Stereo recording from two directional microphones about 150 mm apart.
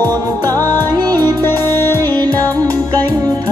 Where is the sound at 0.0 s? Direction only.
25° right (ahead or behind).